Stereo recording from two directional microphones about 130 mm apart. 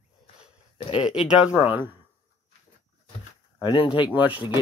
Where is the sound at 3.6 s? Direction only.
40° left (ahead or behind).